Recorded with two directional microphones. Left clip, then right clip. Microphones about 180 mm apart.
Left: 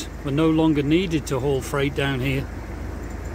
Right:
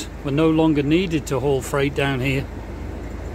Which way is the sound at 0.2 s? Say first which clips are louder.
Right 2 dB; 5° right (ahead or behind).